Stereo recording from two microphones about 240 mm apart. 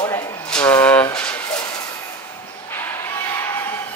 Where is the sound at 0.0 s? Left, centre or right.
Centre.